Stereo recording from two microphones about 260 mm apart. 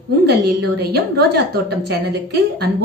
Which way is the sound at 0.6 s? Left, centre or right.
Right.